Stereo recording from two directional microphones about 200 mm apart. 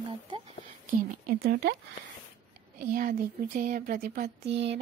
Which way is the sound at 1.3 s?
50° right (ahead or behind).